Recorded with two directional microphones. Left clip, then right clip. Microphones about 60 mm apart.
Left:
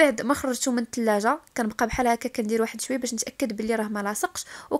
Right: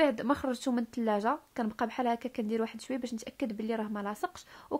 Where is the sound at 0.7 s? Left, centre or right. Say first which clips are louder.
Left 7 dB; left.